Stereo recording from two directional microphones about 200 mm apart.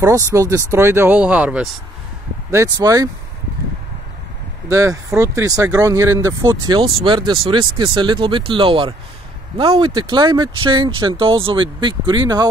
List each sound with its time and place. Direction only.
0.0 s speech: 15° right (ahead or behind)
4.6 s speech: 15° right (ahead or behind)